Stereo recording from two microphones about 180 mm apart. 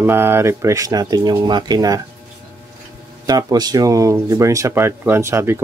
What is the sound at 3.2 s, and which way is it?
Speech, 20° right (ahead or behind).